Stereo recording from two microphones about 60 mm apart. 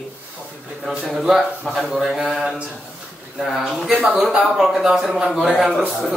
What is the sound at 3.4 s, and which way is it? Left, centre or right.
A man's voice, centre.